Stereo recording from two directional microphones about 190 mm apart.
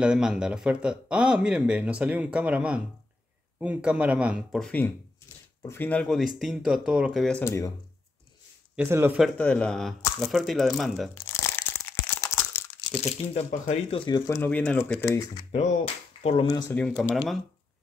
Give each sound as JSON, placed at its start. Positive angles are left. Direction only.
{"t": 0.0, "sound": "a man's voice", "side_deg": -5}
{"t": 8.7, "sound": "speech", "side_deg": -10}
{"t": 9.2, "sound": "a man's voice", "side_deg": 5}
{"t": 11.1, "sound": "crumpling", "side_deg": 15}
{"t": 13.0, "sound": "speech", "side_deg": 35}
{"t": 15.5, "sound": "speech", "side_deg": 35}
{"t": 16.7, "sound": "a man's voice", "side_deg": 5}